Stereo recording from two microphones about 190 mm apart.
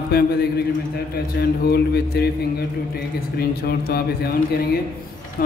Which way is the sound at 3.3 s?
55° left (ahead or behind).